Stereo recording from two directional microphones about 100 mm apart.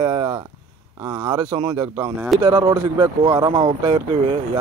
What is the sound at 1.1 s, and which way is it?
Speech, 35° right (ahead or behind).